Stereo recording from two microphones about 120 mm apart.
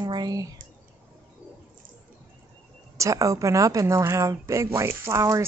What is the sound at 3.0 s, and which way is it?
Speech, 25° right (ahead or behind).